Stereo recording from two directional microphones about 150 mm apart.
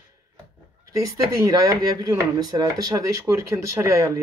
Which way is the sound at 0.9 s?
20° right (ahead or behind).